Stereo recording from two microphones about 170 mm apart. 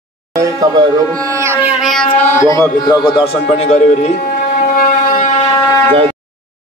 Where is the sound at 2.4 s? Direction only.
20° left (ahead or behind).